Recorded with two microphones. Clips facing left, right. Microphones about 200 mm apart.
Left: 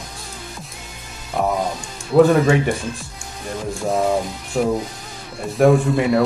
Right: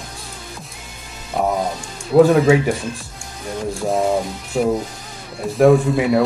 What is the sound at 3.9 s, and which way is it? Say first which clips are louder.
Speech: even; centre (ahead or behind).